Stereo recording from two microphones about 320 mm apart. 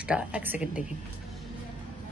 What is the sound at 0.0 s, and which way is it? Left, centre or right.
Speech, centre.